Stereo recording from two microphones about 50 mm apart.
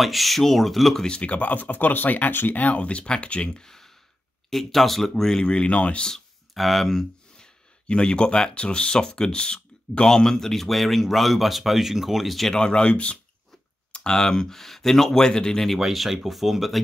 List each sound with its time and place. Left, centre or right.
0.0 s speech: centre
1.0 s speech: left
3.6 s sigh: centre
4.5 s speech: centre
5.4 s speech: centre
6.0 s speech: centre
12.5 s speech: centre
13.9 s speech: centre